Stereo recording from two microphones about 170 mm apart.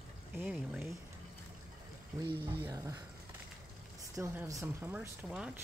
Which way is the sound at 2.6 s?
15° right (ahead or behind).